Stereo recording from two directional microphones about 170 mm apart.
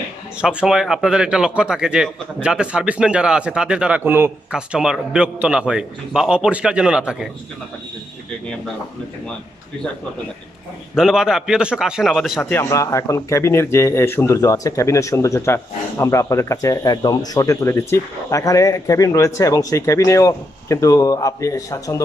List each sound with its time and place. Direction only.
0.4 s a man's voice: 5° right (ahead or behind)
11.0 s a man's voice: 5° right (ahead or behind)
12.4 s speech: 10° left (ahead or behind)